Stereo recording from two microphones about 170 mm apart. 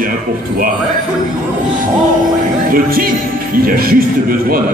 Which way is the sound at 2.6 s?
55° right (ahead or behind).